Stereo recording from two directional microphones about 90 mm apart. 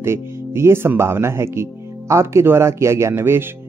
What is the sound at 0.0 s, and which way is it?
Speech, 30° right (ahead or behind).